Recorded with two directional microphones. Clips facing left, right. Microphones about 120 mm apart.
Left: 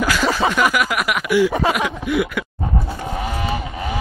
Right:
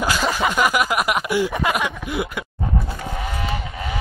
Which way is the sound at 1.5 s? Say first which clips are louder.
Left 3 dB; 30° left (ahead or behind).